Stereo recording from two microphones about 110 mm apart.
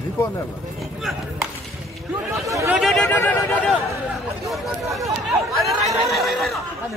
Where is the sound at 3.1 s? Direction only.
15° left (ahead or behind).